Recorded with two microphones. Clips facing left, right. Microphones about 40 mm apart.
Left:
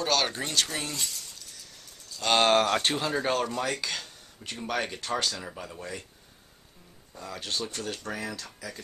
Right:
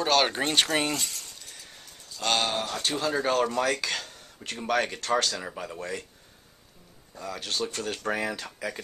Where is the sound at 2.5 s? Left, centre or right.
Left.